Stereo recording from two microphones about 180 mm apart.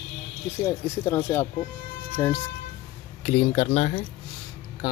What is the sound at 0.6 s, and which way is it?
Speech, 15° left (ahead or behind).